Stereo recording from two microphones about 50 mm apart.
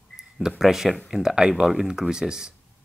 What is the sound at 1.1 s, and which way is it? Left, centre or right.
Speech, centre.